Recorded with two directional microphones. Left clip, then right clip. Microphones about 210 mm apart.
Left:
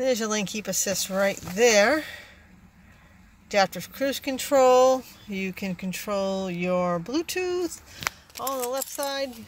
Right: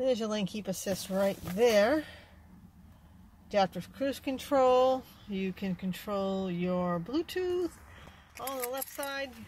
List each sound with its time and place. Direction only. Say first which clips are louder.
0.0 s speech: left 5 dB; 5° right (ahead or behind)
3.4 s speech: left 6 dB; centre (ahead or behind)
8.5 s speech: left 6 dB; 25° left (ahead or behind)